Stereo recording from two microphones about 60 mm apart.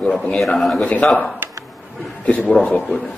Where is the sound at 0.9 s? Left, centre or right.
Centre.